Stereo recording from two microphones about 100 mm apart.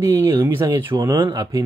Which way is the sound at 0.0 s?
30° right (ahead or behind).